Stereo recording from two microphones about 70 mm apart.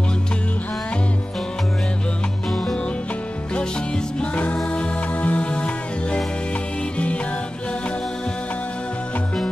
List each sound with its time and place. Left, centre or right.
2.5 s music: centre
4.2 s music: left